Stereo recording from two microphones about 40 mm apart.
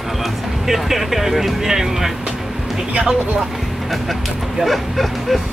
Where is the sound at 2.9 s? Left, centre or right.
Right.